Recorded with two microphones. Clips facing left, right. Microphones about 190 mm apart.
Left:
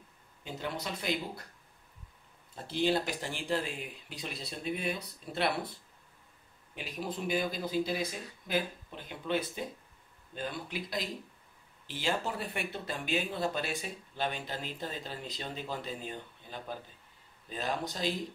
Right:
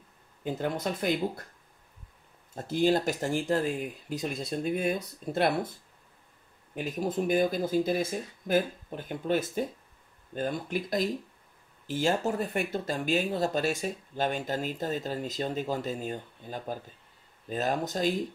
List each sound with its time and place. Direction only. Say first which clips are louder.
0.4 s speech: right 7 dB; 50° right (ahead or behind)
2.5 s speech: right 5 dB; 45° right (ahead or behind)